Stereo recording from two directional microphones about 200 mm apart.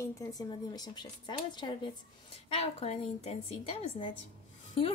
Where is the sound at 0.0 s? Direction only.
15° left (ahead or behind).